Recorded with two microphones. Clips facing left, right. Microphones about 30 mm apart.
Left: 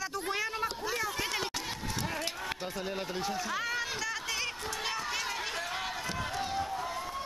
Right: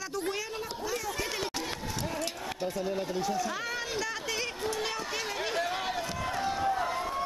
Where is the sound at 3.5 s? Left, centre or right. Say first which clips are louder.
Even; centre.